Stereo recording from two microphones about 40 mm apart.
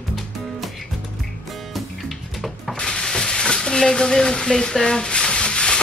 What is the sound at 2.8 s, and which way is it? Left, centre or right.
Frying, centre.